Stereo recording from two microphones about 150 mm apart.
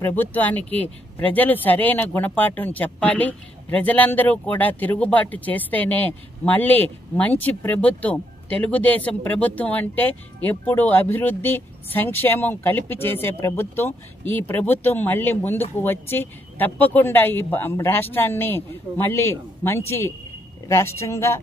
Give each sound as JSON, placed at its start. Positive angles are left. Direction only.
{"t": 0.0, "sound": "speech", "side_deg": 10}